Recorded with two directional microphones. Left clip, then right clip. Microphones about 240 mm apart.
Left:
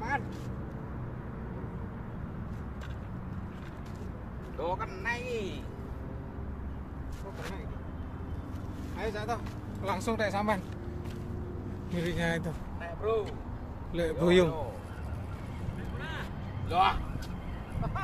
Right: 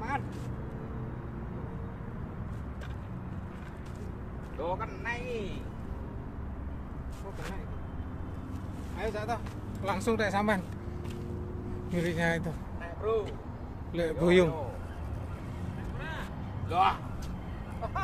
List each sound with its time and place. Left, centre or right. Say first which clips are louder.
4.6 s speech: left 1 dB; left
8.9 s a man's voice: right 1 dB; centre
9.8 s speech: right 1 dB; right
11.9 s speech: right 2 dB; centre
13.0 s speech: even; centre
13.9 s a man's voice: even; centre
16.6 s speech: even; centre